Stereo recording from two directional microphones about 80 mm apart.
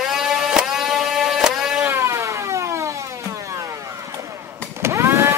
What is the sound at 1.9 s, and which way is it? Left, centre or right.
Vehicle, right.